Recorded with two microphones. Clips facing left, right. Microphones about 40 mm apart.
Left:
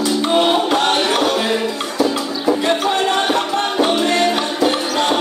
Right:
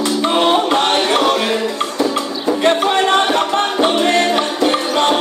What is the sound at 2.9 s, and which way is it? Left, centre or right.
Music, right.